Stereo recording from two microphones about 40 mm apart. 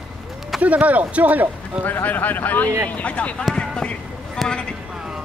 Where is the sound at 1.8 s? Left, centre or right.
Left.